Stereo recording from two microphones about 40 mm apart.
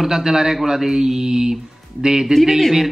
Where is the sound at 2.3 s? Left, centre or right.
Centre.